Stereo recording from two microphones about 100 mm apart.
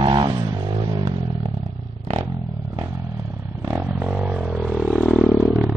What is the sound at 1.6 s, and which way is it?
Clatter, 70° right (ahead or behind).